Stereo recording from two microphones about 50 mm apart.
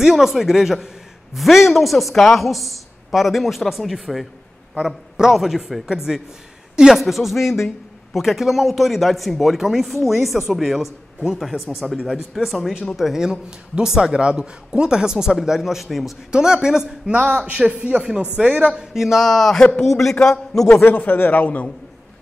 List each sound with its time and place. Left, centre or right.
0.0 s speech: centre
12.5 s speech: centre
16.3 s a man's voice: centre
18.0 s a man's voice: centre
18.9 s a man's voice: centre
20.8 s speech: left